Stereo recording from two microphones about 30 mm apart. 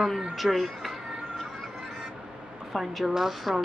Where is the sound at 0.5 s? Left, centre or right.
Centre.